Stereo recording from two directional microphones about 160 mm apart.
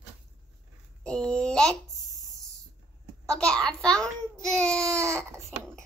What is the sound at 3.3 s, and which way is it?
A child's voice, 5° left (ahead or behind).